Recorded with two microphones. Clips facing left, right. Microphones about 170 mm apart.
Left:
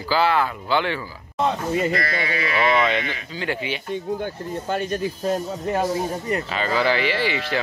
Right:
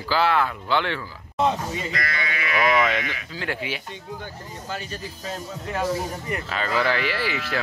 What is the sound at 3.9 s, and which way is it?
Speech, 55° left (ahead or behind).